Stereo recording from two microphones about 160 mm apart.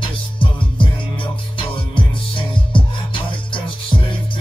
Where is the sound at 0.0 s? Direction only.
30° left (ahead or behind).